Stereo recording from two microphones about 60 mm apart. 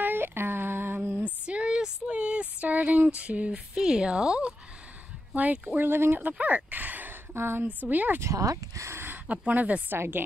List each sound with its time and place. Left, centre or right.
0.0 s a sound: right
1.2 s a sound: centre
3.2 s speech: right
5.8 s speech: right
7.3 s speech: right
7.9 s speech: right
8.2 s speech: right
8.9 s speech: right
9.9 s speech: right